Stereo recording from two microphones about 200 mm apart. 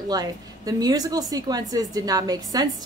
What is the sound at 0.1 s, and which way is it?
A woman's voice, 20° right (ahead or behind).